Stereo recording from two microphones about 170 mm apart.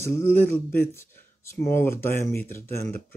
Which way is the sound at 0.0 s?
15° left (ahead or behind).